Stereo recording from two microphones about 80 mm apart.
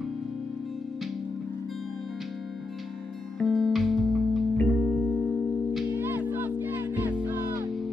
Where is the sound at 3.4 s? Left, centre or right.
Centre.